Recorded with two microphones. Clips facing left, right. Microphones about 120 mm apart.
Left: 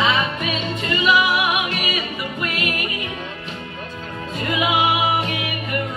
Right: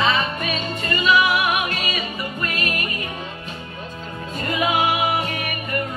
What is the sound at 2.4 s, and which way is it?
Music, 15° left (ahead or behind).